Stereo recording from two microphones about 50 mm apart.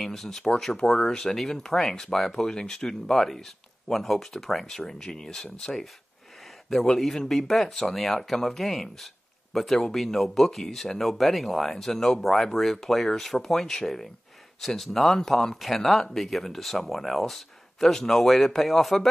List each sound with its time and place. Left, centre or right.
0.0 s speech: centre
7.0 s speech: centre